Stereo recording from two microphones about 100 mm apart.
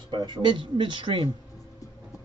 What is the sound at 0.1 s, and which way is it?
Speech, 50° right (ahead or behind).